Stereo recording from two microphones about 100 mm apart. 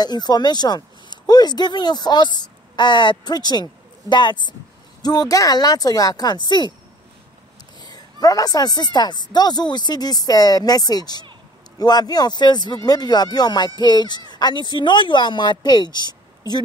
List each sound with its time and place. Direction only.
0.0 s a woman's voice: 45° left (ahead or behind)
7.8 s a woman's voice: 40° left (ahead or behind)
14.3 s a sound: 45° left (ahead or behind)
14.8 s speech: 55° left (ahead or behind)